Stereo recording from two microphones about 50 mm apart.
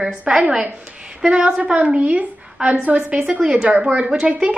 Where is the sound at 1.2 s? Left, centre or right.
Centre.